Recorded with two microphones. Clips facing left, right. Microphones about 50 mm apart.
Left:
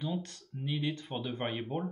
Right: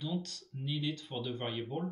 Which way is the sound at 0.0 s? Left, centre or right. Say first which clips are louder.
Left 2 dB; left.